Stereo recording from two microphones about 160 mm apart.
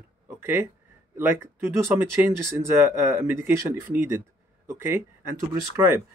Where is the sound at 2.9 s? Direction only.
15° right (ahead or behind).